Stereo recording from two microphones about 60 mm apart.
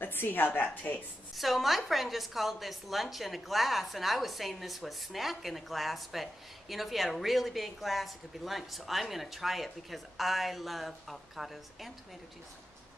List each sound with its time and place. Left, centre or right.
0.0 s a woman's voice: left
1.3 s speech: centre